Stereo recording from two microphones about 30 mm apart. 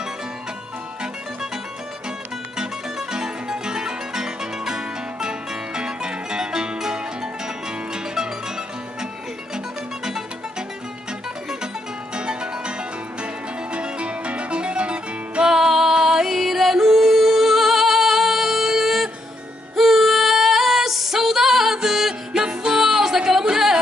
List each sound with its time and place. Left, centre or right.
3.1 s music: right
7.9 s music: right
12.2 s music: right
13.7 s music: right
15.5 s music: centre
19.7 s female singing: centre
21.8 s music: centre
22.3 s music: right